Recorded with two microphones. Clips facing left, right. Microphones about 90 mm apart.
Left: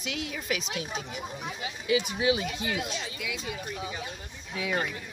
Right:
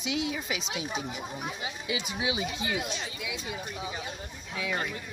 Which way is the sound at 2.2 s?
10° right (ahead or behind).